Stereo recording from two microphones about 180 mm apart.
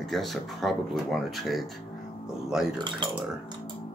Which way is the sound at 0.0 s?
Centre (ahead or behind).